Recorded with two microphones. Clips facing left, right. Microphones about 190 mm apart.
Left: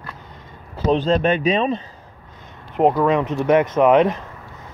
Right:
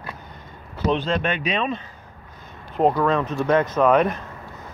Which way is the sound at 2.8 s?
15° left (ahead or behind).